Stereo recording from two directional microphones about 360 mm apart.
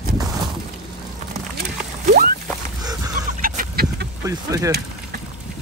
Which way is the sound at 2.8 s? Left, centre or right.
Centre.